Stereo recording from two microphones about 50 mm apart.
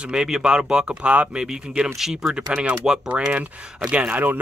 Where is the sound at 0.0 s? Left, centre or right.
Centre.